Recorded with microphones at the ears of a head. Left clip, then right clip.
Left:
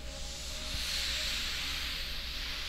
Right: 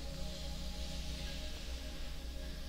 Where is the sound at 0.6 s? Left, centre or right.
Left.